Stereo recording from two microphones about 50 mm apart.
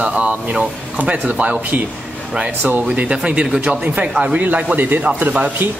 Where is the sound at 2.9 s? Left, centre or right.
Right.